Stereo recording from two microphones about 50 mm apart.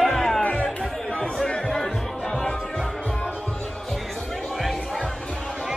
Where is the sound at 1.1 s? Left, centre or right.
Centre.